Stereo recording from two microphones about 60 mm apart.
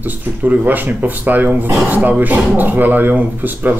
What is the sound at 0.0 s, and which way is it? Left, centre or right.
Speech, right.